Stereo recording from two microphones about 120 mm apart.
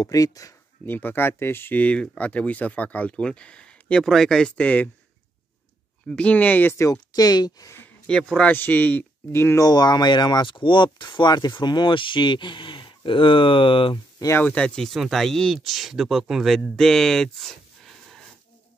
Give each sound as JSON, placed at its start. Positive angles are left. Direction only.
{"t": 0.0, "sound": "speech", "side_deg": 30}
{"t": 0.8, "sound": "speech", "side_deg": 15}
{"t": 6.0, "sound": "speech", "side_deg": 10}
{"t": 8.1, "sound": "speech", "side_deg": 5}
{"t": 9.7, "sound": "speech", "side_deg": 35}
{"t": 14.4, "sound": "speech", "side_deg": 10}